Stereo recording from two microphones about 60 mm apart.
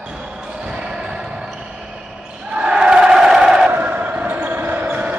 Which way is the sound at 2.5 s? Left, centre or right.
Centre.